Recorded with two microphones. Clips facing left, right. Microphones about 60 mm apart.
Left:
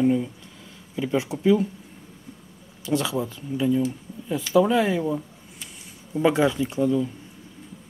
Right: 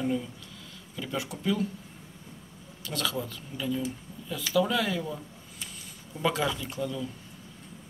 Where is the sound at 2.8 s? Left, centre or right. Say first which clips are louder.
Left 8 dB; left.